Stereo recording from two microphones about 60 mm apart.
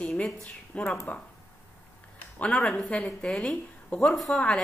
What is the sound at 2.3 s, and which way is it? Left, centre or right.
A woman's voice, left.